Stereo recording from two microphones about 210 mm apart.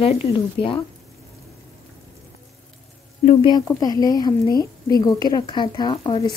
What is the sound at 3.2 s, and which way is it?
Speech, 25° left (ahead or behind).